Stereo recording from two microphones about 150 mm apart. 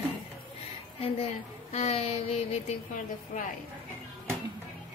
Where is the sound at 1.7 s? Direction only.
45° left (ahead or behind).